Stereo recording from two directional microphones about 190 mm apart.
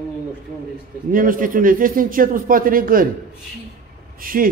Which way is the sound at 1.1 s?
45° right (ahead or behind).